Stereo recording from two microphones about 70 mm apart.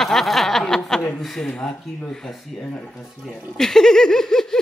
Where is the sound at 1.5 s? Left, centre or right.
Centre.